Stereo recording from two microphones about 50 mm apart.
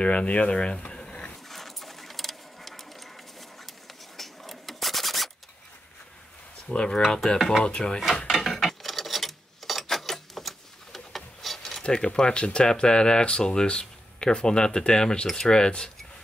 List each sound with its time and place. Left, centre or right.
0.0 s speech: left
1.5 s printer: centre
4.2 s a sound: centre
6.7 s speech: centre
7.3 s speech: centre
7.6 s speech: centre
8.3 s a sound: centre
11.8 s speech: centre